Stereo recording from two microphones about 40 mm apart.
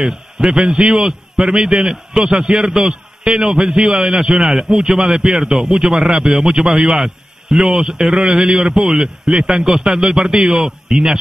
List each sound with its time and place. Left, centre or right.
0.0 s a man's voice: centre